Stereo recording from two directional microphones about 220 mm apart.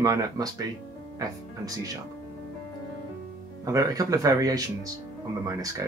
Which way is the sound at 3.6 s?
15° right (ahead or behind).